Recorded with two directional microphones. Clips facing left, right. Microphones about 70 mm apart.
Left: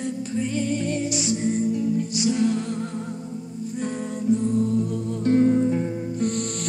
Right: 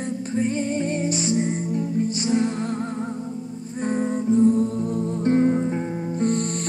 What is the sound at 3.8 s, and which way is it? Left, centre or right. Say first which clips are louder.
Music: right 4 dB; right.